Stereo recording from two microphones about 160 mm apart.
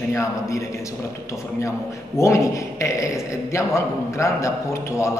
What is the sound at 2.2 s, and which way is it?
A man's voice, 20° left (ahead or behind).